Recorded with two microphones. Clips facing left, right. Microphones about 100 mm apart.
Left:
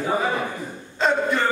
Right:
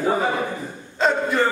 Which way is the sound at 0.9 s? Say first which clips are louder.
Right 1 dB; centre (ahead or behind).